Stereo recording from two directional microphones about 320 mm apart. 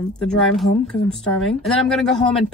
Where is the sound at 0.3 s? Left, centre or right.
Centre.